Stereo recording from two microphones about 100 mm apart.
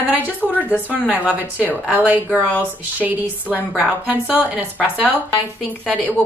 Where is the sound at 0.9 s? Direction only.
15° right (ahead or behind).